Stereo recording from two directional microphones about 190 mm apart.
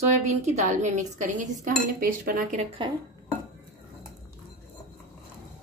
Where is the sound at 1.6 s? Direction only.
45° right (ahead or behind).